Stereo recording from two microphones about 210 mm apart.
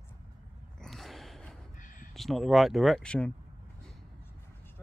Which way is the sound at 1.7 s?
40° left (ahead or behind).